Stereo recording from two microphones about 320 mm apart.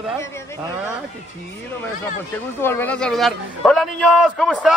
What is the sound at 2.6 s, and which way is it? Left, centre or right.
A man's voice, centre.